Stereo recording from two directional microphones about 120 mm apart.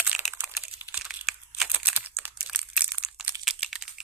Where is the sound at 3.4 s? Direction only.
Centre (ahead or behind).